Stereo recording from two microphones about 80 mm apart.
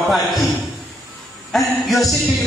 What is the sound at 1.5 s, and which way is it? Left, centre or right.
Speech, centre.